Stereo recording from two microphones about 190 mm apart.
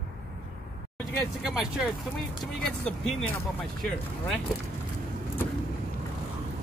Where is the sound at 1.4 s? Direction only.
Centre (ahead or behind).